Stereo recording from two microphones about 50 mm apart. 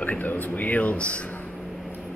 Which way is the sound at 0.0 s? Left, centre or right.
Left.